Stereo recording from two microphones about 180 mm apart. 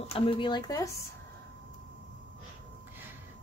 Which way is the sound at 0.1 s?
30° left (ahead or behind).